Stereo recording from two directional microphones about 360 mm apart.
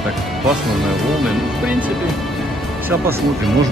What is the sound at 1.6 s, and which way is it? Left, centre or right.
Speech, centre.